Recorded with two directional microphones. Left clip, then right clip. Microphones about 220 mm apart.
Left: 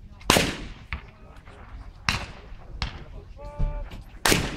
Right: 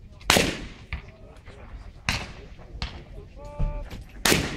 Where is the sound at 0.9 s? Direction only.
45° left (ahead or behind).